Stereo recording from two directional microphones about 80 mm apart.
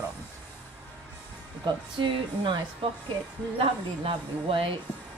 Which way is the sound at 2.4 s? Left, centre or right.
Right.